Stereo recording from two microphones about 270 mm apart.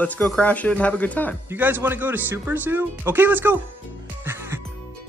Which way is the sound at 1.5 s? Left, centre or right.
Centre.